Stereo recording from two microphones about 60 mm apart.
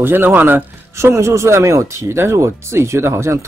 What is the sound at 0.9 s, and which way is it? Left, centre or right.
A man's voice, right.